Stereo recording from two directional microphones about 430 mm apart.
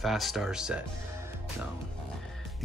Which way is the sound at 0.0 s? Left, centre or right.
Centre.